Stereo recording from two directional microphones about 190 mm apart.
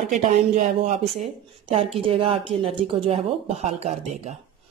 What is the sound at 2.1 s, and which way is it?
A woman's voice, 30° right (ahead or behind).